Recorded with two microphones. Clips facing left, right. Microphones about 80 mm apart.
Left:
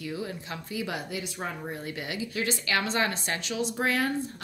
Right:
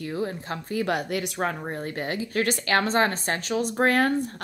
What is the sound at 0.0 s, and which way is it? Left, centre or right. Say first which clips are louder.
Speech: right 5 dB; right.